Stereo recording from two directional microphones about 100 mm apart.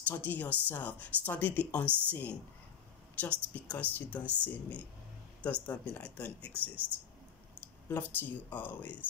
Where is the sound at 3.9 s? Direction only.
15° left (ahead or behind).